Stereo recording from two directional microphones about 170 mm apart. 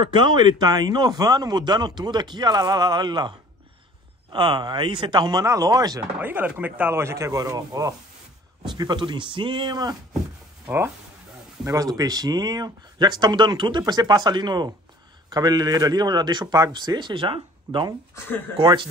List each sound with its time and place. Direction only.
0.1 s speech: 25° right (ahead or behind)
6.1 s speech: 10° right (ahead or behind); by 9.9 s 25° right (ahead or behind)
11.6 s speech: 20° right (ahead or behind)